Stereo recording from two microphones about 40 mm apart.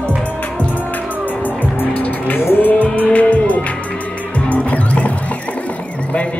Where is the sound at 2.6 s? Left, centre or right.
Left.